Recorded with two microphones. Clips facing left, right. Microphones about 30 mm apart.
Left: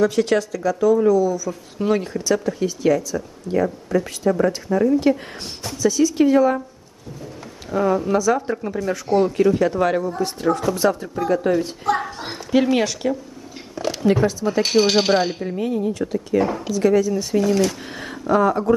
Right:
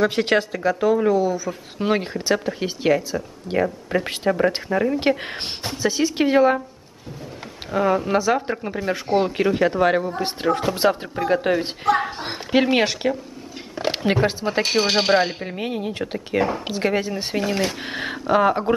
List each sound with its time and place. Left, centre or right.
0.0 s speech: right
7.7 s speech: right
14.7 s speech: right